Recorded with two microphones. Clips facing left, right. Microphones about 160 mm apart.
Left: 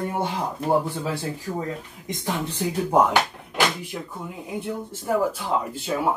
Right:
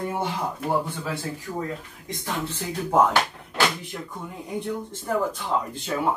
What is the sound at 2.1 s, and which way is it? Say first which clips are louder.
Speech: left 2 dB; 20° left (ahead or behind).